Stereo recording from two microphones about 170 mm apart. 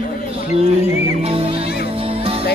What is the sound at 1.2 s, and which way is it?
Music, 35° right (ahead or behind).